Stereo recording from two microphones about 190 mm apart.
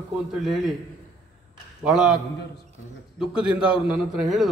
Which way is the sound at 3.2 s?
5° right (ahead or behind).